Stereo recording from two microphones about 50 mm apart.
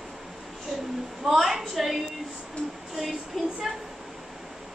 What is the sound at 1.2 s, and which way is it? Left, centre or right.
Speech, centre.